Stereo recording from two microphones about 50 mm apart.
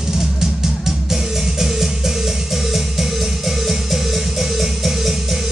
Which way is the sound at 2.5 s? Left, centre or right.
Centre.